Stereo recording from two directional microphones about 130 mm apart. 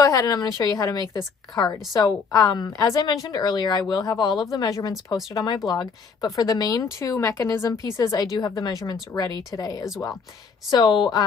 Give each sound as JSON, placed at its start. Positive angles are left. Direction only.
{"t": 0.0, "sound": "a woman's voice", "side_deg": 25}
{"t": 10.7, "sound": "a woman's voice", "side_deg": 35}